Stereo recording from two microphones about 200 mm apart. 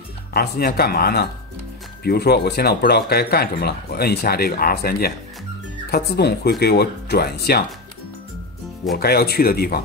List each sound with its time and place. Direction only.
0.3 s speech: 50° left (ahead or behind)
8.9 s speech: 50° left (ahead or behind)